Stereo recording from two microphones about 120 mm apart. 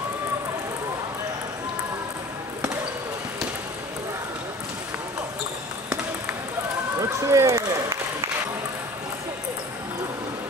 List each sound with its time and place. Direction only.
7.0 s speech: 25° right (ahead or behind)